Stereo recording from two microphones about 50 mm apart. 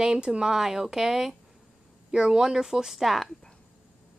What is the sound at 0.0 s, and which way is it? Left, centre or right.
Speech, centre.